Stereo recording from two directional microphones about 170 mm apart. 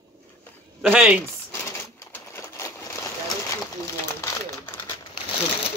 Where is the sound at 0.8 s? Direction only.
10° right (ahead or behind).